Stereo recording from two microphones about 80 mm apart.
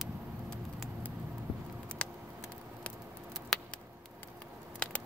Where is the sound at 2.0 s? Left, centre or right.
Centre.